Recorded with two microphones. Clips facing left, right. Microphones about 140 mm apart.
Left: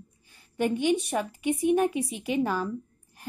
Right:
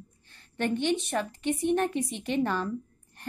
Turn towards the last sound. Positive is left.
turn(degrees=5)  # may be behind; listen again after turning